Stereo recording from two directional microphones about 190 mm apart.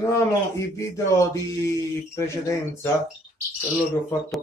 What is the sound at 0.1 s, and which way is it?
Speech, 15° left (ahead or behind).